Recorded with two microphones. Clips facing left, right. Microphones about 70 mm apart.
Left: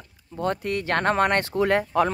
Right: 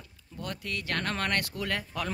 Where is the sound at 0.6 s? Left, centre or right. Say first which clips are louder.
Left 8 dB; left.